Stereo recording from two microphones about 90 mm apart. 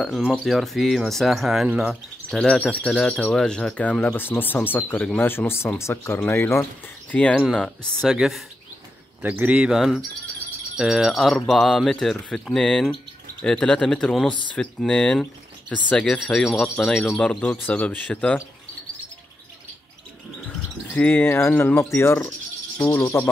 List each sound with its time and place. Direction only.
0.1 s speech: 5° right (ahead or behind)
2.6 s speech: 10° left (ahead or behind)
4.0 s speech: 25° left (ahead or behind)
7.1 s speech: 15° left (ahead or behind)
9.2 s speech: 20° right (ahead or behind); by 18.4 s 15° left (ahead or behind)
20.4 s bird: 15° left (ahead or behind)
21.9 s speech: 25° left (ahead or behind)